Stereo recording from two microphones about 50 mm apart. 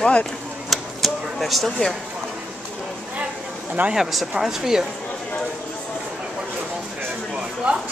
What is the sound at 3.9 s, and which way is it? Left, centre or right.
Speech, centre.